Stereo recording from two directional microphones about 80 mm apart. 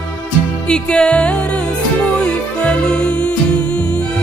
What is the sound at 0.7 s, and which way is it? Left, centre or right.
Music, centre.